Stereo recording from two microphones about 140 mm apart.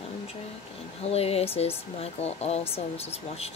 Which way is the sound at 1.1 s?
45° left (ahead or behind).